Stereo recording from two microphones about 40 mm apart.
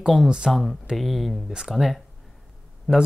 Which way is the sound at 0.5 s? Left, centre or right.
Centre.